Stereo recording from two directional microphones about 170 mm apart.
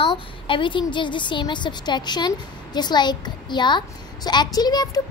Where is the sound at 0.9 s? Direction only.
30° left (ahead or behind).